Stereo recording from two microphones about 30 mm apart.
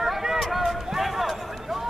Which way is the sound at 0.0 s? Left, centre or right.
Centre.